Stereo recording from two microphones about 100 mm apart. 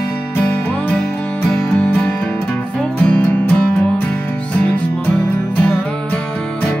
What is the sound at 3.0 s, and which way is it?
Music, 15° left (ahead or behind).